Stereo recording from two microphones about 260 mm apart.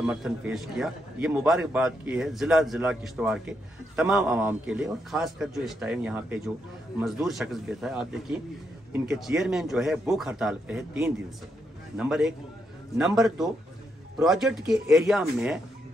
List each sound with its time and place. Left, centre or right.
0.0 s a man's voice: centre